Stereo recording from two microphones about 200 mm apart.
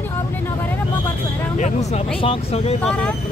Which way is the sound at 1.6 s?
35° left (ahead or behind).